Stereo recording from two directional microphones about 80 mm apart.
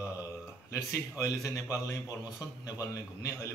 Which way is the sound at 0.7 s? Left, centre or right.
Left.